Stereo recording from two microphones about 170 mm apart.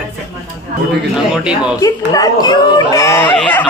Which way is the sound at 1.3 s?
5° right (ahead or behind).